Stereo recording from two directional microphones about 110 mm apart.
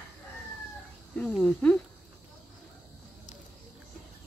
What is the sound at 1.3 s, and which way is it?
Speech, 10° left (ahead or behind).